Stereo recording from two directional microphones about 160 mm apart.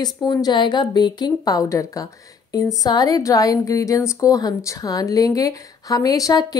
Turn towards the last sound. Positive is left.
turn(degrees=25)  # may be behind; listen again after turning